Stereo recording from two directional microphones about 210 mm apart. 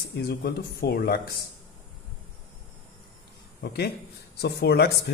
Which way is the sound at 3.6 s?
50° left (ahead or behind).